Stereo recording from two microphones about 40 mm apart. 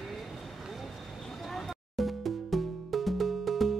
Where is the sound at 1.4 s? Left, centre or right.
Centre.